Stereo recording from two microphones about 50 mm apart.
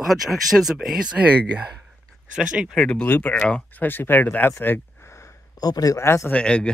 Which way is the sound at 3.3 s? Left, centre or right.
Left.